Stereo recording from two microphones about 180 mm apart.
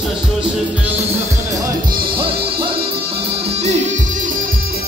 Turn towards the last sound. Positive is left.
turn(degrees=-35)  # may be behind; listen again after turning